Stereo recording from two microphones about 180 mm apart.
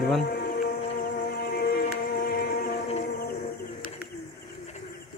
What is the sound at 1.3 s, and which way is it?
Music, 60° left (ahead or behind).